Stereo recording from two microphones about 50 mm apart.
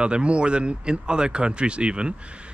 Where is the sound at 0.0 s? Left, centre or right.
Right.